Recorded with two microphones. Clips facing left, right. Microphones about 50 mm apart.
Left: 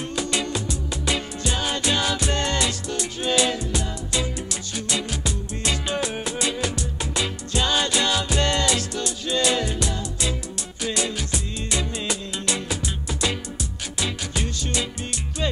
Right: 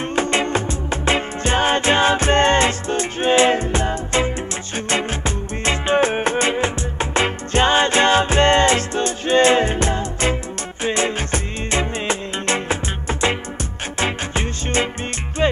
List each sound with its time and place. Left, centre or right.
0.0 s music: right
13.9 s music: right